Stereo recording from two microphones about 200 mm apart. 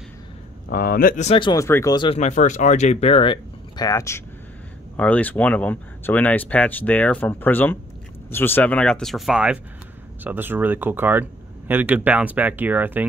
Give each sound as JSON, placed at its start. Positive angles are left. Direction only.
{"t": 0.7, "sound": "speech", "side_deg": 45}
{"t": 2.1, "sound": "speech", "side_deg": 35}